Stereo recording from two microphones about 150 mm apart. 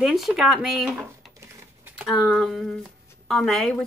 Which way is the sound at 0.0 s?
Centre (ahead or behind).